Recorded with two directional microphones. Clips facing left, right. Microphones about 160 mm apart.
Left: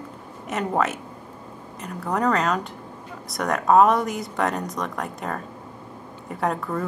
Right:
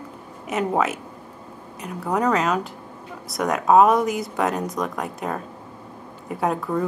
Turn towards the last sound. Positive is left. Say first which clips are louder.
# right 2 dB
turn(degrees=-5)  # may be behind; listen again after turning